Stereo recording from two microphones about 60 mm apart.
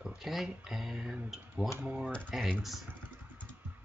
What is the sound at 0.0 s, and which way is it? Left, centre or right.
Speech, centre.